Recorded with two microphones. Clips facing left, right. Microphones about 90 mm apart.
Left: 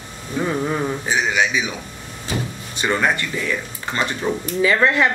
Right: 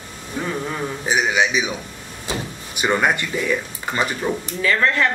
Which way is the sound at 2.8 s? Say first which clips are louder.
Right 1 dB; 15° right (ahead or behind).